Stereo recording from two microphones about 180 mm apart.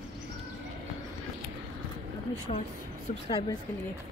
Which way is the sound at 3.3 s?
25° left (ahead or behind).